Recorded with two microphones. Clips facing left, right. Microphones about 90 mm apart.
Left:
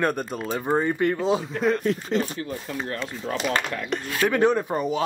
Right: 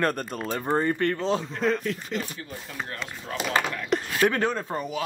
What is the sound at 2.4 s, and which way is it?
Speech, 50° left (ahead or behind).